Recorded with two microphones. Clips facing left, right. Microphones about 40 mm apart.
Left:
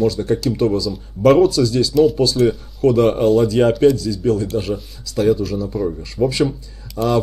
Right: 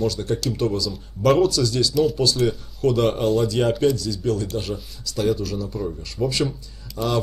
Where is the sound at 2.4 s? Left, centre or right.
Left.